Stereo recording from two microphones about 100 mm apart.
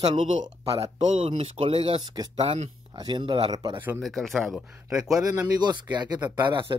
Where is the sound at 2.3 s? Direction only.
85° right.